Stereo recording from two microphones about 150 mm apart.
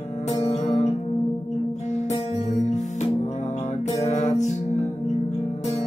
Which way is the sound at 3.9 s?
50° left (ahead or behind).